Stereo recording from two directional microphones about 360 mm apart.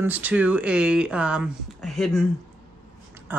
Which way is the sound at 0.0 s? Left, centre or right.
Centre.